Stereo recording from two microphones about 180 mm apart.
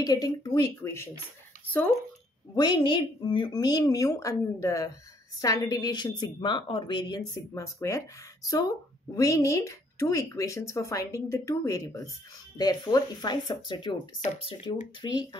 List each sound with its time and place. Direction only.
0.0 s a woman's voice: 20° left (ahead or behind)
2.5 s a woman's voice: 25° left (ahead or behind)
9.1 s a woman's voice: 15° left (ahead or behind)